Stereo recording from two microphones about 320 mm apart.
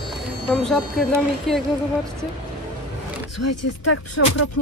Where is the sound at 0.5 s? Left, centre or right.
Centre.